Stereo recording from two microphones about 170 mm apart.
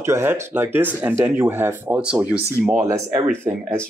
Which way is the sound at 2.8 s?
15° right (ahead or behind).